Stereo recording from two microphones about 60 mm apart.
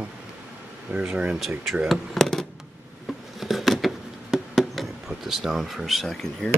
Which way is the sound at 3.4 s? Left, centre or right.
Centre.